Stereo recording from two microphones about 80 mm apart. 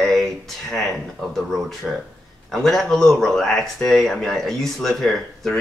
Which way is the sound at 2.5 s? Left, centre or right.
Centre.